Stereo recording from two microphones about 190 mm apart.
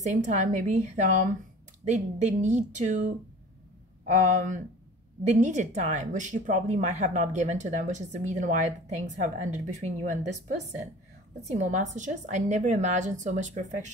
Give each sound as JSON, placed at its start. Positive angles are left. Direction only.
{"t": 0.0, "sound": "a woman's voice", "side_deg": -40}
{"t": 4.0, "sound": "a woman's voice", "side_deg": -40}